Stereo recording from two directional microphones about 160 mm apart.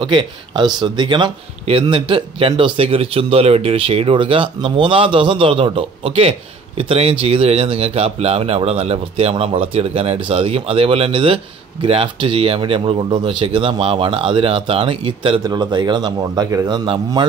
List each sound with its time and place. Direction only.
0.0 s speech: 30° right (ahead or behind)